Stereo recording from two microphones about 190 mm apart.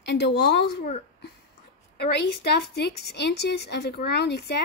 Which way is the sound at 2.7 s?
60° left (ahead or behind).